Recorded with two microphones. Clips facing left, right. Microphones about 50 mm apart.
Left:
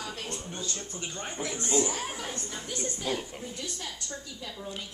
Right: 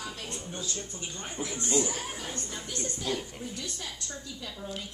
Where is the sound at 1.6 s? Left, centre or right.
Centre.